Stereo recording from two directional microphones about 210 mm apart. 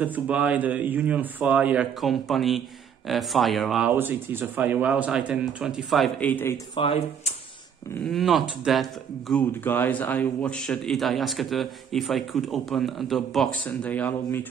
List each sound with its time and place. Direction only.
0.0 s a man's voice: 5° right (ahead or behind); by 6.6 s 10° left (ahead or behind)
6.7 s speech: 25° left (ahead or behind)
8.1 s a man's voice: centre (ahead or behind)